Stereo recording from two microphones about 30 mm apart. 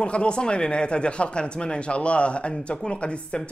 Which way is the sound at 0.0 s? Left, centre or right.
Left.